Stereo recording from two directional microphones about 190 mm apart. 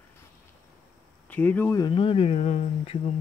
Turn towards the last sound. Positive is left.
turn(degrees=35)  # may be behind; listen again after turning